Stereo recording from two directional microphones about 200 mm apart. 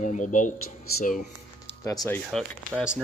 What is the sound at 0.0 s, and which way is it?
Speech, 40° left (ahead or behind).